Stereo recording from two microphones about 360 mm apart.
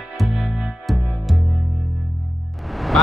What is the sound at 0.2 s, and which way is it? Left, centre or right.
Music, centre.